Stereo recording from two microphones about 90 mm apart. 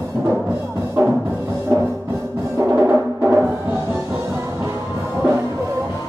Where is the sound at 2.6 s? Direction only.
30° right (ahead or behind).